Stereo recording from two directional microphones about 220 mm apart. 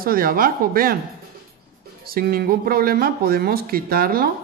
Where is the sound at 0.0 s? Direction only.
40° right (ahead or behind).